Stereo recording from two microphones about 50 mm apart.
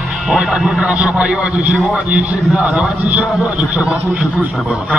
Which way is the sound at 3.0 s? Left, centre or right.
Right.